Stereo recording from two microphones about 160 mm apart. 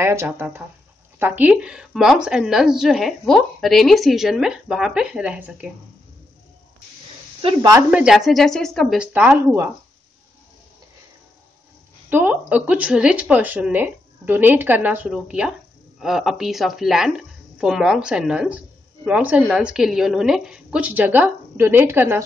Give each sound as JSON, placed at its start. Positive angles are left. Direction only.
{"t": 0.0, "sound": "a woman's voice", "side_deg": -15}
{"t": 7.4, "sound": "speech", "side_deg": -25}
{"t": 7.9, "sound": "a woman's voice", "side_deg": -5}
{"t": 12.1, "sound": "a woman's voice", "side_deg": -10}